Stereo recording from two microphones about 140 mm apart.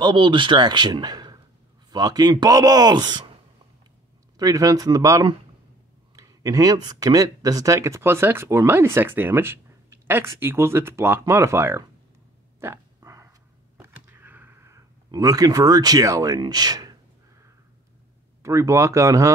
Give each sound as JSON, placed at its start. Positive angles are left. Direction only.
{"t": 0.0, "sound": "a man's voice", "side_deg": -35}
{"t": 4.4, "sound": "speech", "side_deg": -25}
{"t": 12.5, "sound": "a sound", "side_deg": -20}
{"t": 18.4, "sound": "speech", "side_deg": -20}